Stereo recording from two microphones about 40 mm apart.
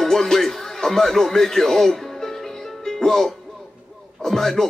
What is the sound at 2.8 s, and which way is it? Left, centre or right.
Music, centre.